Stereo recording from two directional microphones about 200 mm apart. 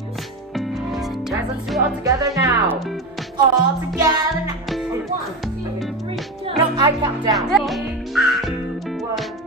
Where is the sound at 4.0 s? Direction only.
20° right (ahead or behind).